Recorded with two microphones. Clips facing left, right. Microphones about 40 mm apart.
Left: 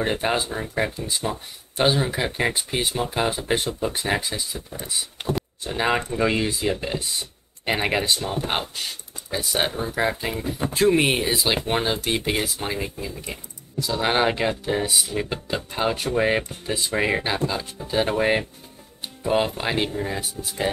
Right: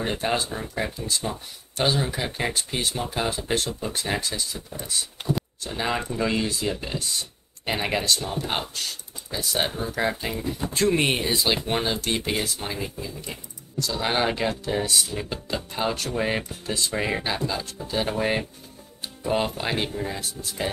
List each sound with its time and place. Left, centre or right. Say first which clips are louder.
0.0 s speech: left 2 dB; left
12.1 s speech: left 2 dB; left
13.7 s speech: left 3 dB; centre